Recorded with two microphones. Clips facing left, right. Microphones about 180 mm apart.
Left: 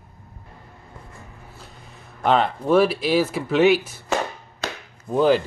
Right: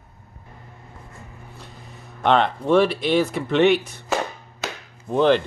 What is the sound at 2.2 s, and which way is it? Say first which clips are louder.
Speech: right 1 dB; 5° left (ahead or behind).